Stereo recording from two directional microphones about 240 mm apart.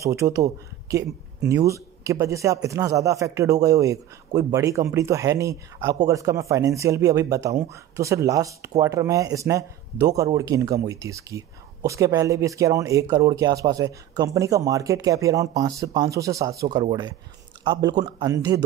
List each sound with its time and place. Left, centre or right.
0.0 s speech: centre